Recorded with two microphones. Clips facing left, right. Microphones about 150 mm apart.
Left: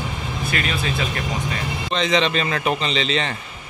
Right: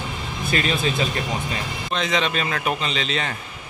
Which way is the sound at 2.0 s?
5° right (ahead or behind).